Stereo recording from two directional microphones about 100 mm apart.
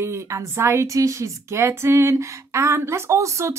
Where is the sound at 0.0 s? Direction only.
30° right (ahead or behind).